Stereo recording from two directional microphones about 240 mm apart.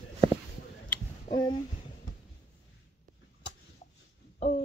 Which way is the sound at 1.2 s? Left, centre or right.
Centre.